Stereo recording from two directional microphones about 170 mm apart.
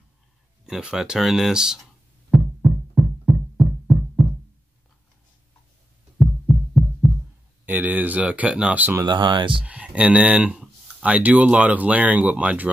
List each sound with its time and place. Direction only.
0.7 s speech: 5° right (ahead or behind)
2.3 s music: centre (ahead or behind)
6.1 s pulse: centre (ahead or behind)
7.6 s speech: 10° right (ahead or behind)
9.0 s speech: 30° right (ahead or behind)
9.7 s speech: 5° right (ahead or behind)